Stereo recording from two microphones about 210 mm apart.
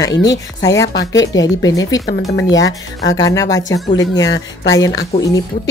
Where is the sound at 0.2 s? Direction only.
15° left (ahead or behind).